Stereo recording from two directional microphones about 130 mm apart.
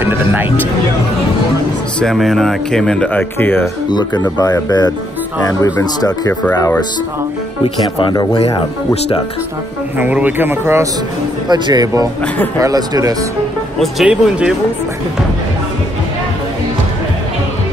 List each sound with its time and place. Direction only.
0.0 s music: 15° right (ahead or behind)
2.0 s speech: centre (ahead or behind)
3.9 s speech: 35° left (ahead or behind)
7.6 s speech: 35° left (ahead or behind)
8.4 s speech: 50° left (ahead or behind)
9.9 s a man's voice: 15° right (ahead or behind)
11.4 s speech: 35° right (ahead or behind)
13.7 s speech: 5° right (ahead or behind)